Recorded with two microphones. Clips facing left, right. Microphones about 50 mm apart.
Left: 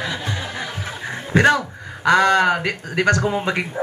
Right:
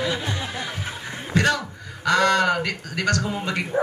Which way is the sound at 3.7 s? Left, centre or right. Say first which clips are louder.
Right 3 dB; right.